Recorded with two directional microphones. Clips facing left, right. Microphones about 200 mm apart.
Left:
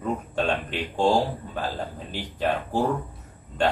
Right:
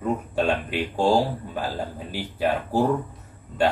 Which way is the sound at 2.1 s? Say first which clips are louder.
Right 2 dB; 5° right (ahead or behind).